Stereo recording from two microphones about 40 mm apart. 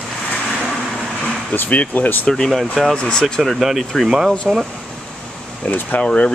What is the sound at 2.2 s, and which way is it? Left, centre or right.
Speech, centre.